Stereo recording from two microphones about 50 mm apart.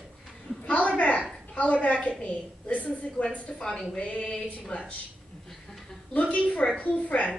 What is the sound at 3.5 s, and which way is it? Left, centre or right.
Speech, centre.